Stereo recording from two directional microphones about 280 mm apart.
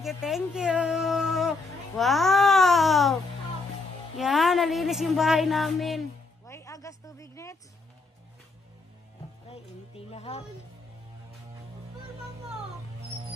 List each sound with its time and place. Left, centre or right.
0.0 s a woman's voice: centre
4.2 s a woman's voice: centre
6.4 s a sound: centre
9.5 s speech: left